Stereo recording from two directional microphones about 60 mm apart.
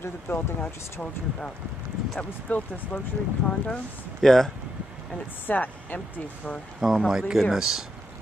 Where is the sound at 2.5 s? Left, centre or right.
Left.